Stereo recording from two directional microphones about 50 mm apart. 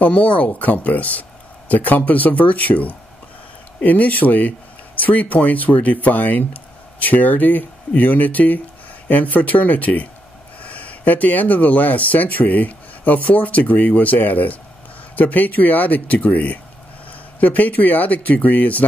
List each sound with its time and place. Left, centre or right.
0.1 s speech: left